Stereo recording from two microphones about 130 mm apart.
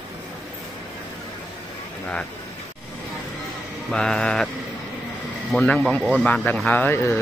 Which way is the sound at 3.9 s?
5° left (ahead or behind).